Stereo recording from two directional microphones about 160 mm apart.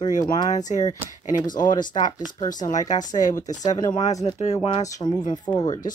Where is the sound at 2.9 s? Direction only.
25° left (ahead or behind).